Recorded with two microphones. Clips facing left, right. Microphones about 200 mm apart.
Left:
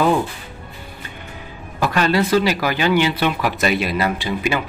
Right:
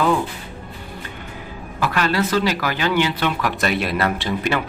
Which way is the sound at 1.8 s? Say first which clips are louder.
Left 2 dB; 25° left (ahead or behind).